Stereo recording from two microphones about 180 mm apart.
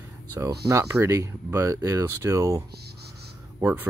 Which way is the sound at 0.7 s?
15° right (ahead or behind).